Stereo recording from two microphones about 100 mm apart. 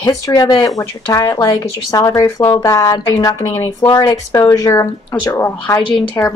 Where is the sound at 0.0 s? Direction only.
45° left (ahead or behind).